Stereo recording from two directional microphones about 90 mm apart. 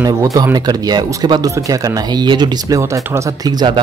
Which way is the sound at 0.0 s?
40° right (ahead or behind).